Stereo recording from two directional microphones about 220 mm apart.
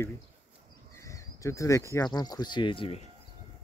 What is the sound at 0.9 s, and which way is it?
Speech, 15° left (ahead or behind).